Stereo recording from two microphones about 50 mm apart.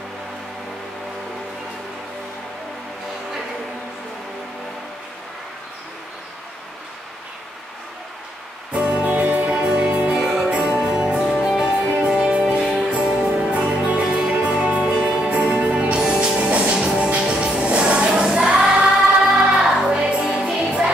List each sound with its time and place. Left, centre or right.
8.7 s music: right
9.6 s music: right
10.1 s music: centre
10.4 s music: right
10.9 s music: centre